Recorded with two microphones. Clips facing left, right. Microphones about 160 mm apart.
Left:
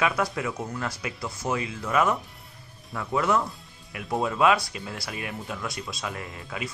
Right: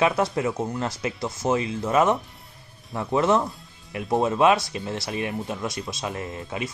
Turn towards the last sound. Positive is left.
turn(degrees=-25)  # may be behind; listen again after turning